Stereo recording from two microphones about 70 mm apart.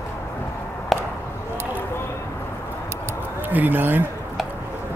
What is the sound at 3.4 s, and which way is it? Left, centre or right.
Speech, right.